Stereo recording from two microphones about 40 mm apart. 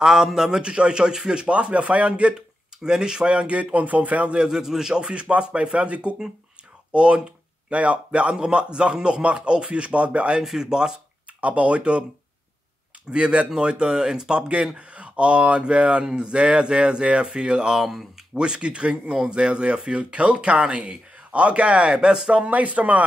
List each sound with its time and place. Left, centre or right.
0.0 s speech: centre
0.6 s speech: right
2.8 s speech: centre; by 4.4 s right
4.4 s speech: centre
10.4 s speech: centre
11.4 s speech: right
13.1 s speech: right
22.5 s speech: right